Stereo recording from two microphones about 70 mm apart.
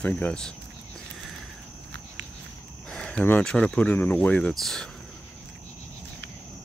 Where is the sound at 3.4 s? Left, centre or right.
Centre.